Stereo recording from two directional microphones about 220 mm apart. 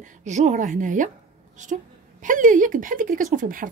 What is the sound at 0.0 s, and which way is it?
A woman's voice, 30° right (ahead or behind).